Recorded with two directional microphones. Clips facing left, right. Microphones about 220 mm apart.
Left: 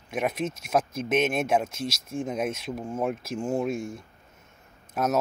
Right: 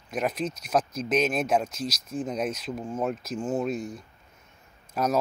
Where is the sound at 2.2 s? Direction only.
5° left (ahead or behind).